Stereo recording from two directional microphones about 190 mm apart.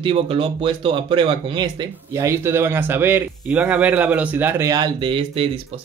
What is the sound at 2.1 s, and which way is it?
Speech, 15° right (ahead or behind).